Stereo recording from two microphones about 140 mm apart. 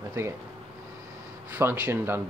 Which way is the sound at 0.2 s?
20° right (ahead or behind).